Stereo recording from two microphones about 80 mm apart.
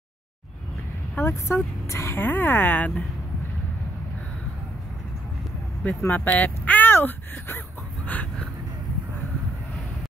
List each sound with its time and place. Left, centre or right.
1.1 s speech: left
2.2 s speech: left
5.9 s speech: left